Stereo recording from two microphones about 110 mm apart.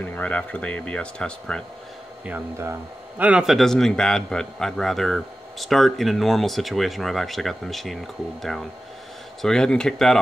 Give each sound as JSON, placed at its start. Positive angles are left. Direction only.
{"t": 0.1, "sound": "speech", "side_deg": 15}
{"t": 2.2, "sound": "speech", "side_deg": -20}
{"t": 3.2, "sound": "a man's voice", "side_deg": -10}